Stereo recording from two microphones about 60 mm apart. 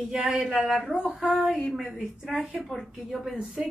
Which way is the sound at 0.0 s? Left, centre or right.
Centre.